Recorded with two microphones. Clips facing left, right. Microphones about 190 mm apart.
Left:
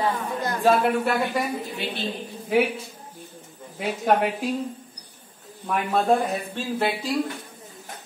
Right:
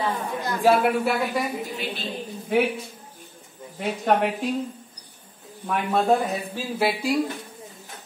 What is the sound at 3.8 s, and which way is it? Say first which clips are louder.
Speech: even; centre (ahead or behind).